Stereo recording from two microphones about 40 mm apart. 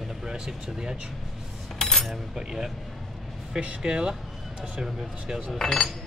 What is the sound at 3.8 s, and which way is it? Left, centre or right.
Speech, centre.